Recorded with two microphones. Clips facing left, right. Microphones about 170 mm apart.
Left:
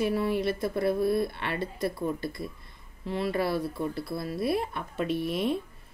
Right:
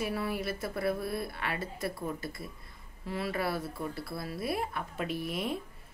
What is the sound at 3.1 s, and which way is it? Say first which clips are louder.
Speech: left 5 dB; 25° left (ahead or behind).